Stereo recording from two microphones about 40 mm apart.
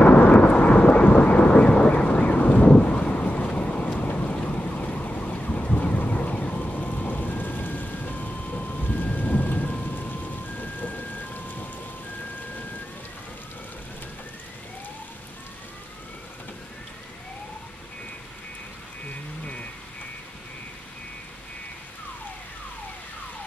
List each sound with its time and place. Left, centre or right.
0.0 s aircraft: left
3.9 s wind: left
9.9 s rain: left